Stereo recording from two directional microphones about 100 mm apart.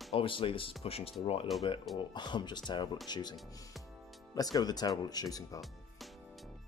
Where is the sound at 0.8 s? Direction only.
75° left (ahead or behind).